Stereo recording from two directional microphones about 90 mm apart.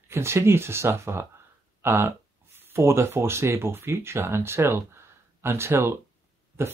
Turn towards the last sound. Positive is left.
turn(degrees=-25)  # may be behind; listen again after turning